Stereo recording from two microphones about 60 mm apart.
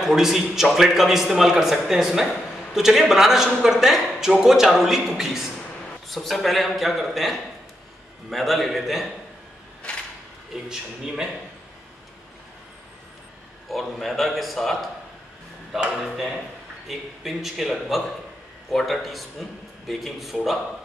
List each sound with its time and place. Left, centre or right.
0.0 s a man's voice: centre
9.9 s mechanisms: centre
10.5 s a man's voice: centre
13.7 s a man's voice: centre